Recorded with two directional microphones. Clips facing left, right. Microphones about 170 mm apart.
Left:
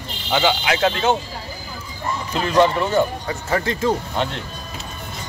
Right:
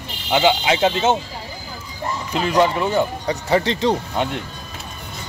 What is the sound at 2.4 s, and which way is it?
Speech, 10° right (ahead or behind).